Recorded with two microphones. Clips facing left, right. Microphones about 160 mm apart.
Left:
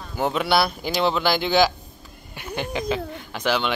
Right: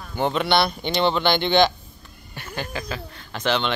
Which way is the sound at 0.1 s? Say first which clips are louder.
Even; 5° left (ahead or behind).